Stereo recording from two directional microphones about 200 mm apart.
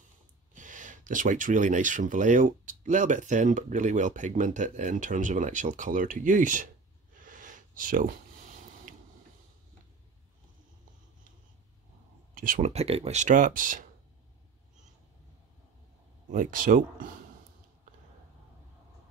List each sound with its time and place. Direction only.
0.6 s speech: 40° right (ahead or behind)
7.2 s a sound: 40° right (ahead or behind)
12.4 s speech: 40° right (ahead or behind)
16.3 s speech: 40° right (ahead or behind)